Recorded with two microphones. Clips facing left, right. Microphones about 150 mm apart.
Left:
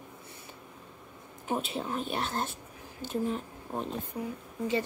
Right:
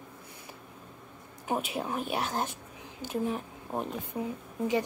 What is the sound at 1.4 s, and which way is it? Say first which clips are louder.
A woman's voice: right 1 dB; 10° right (ahead or behind).